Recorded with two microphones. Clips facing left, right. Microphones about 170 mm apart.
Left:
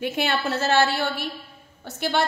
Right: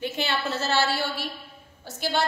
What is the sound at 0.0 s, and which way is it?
Speech, 55° left (ahead or behind).